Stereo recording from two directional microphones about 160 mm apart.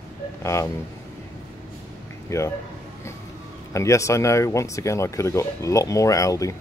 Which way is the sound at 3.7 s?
20° left (ahead or behind).